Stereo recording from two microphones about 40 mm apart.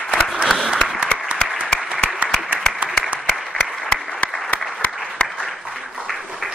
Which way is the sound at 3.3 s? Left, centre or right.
Centre.